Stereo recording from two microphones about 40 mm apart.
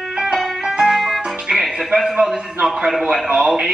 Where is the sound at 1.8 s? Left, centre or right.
Centre.